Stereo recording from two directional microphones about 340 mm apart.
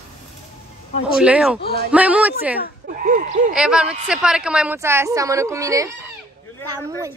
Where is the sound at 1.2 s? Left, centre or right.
Centre.